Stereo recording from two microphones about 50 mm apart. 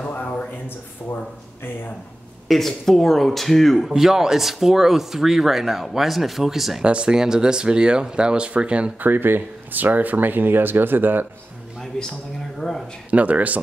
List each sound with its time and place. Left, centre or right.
2.4 s speech: centre
3.9 s speech: centre
6.8 s speech: right
9.0 s speech: right
12.5 s speech: centre
13.1 s speech: right